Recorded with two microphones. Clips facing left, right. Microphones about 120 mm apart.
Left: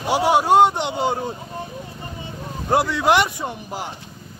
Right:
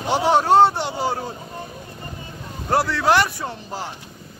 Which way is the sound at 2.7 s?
15° left (ahead or behind).